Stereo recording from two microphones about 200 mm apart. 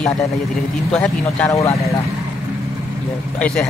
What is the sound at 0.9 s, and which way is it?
Speech, 5° left (ahead or behind).